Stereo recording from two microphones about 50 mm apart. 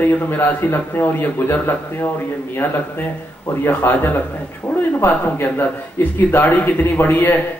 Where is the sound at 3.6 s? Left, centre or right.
Left.